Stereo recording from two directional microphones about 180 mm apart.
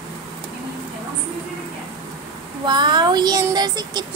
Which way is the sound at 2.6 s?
25° right (ahead or behind).